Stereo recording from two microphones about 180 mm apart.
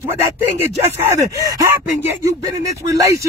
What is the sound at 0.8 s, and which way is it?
Speech, 15° right (ahead or behind).